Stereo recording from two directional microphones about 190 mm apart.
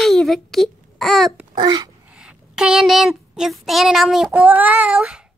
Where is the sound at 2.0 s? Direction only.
5° right (ahead or behind).